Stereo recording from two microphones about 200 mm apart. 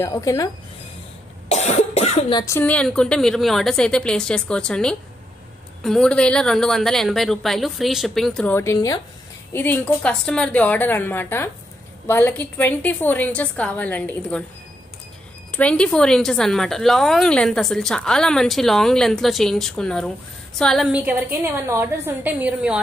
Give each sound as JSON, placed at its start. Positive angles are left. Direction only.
{"t": 0.0, "sound": "a woman's voice", "side_deg": 15}
{"t": 1.5, "sound": "a woman's voice", "side_deg": 35}
{"t": 15.5, "sound": "a woman's voice", "side_deg": 5}